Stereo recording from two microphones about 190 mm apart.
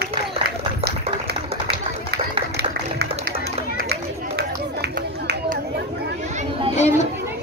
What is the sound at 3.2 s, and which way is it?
Run, 55° right (ahead or behind).